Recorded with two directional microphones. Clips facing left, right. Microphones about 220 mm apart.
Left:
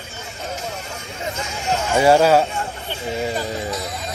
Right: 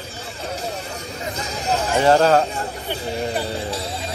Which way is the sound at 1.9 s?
10° left (ahead or behind).